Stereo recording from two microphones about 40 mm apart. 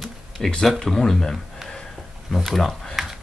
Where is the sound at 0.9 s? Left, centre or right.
Centre.